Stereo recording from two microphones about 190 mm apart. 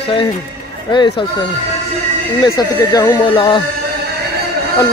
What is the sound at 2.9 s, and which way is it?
Speech, 20° left (ahead or behind).